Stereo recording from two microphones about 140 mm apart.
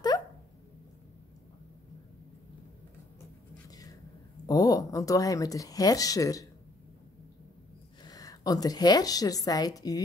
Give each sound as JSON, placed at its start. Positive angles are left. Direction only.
{"t": 4.5, "sound": "speech", "side_deg": 25}
{"t": 8.0, "sound": "a woman's voice", "side_deg": 25}